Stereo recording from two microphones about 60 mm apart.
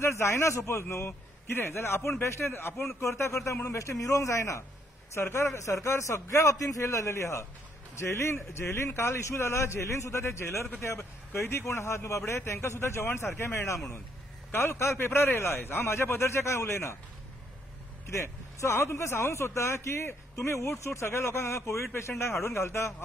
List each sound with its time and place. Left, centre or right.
0.0 s a man's voice: left
18.0 s a man's voice: left